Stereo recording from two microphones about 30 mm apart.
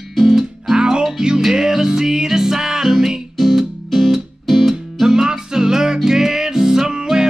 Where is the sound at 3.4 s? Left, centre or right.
Centre.